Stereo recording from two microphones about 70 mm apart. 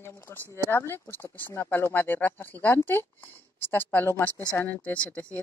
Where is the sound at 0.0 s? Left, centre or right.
Left.